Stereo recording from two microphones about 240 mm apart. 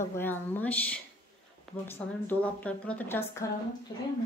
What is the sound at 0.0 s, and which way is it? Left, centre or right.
A woman's voice, centre.